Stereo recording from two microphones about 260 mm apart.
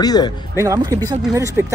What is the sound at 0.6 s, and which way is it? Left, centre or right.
Speech, centre.